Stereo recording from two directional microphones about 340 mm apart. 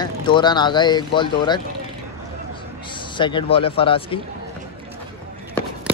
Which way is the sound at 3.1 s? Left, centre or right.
Centre.